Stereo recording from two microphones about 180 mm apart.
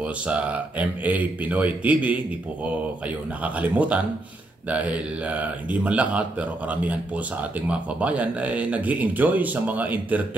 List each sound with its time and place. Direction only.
0.3 s a man's voice: 5° right (ahead or behind)
3.4 s a man's voice: 5° right (ahead or behind)